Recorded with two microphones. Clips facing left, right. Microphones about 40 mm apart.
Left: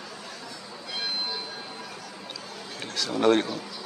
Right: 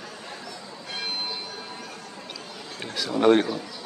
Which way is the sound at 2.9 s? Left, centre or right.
Centre.